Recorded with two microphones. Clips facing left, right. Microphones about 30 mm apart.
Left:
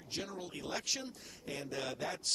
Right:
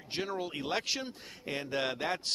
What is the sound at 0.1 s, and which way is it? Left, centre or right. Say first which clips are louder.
Speech: right 7 dB; right.